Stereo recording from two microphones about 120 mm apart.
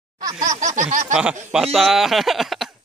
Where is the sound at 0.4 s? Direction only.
90° right.